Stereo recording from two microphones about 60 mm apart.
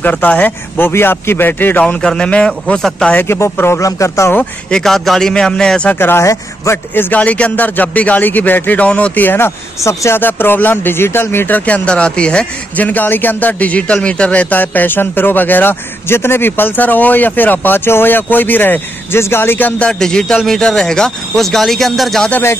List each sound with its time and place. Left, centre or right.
0.0 s speech: left
2.0 s speech: centre
3.3 s speech: left
3.8 s speech: left
4.6 s speech: centre
5.9 s speech: left
6.2 s speech: left
7.0 s speech: left
9.8 s speech: left
10.1 s speech: left
19.1 s speech: left
19.8 s speech: centre